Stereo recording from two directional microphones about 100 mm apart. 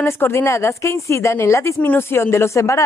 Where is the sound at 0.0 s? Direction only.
25° left (ahead or behind).